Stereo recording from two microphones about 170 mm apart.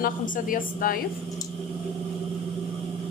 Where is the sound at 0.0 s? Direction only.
55° left (ahead or behind).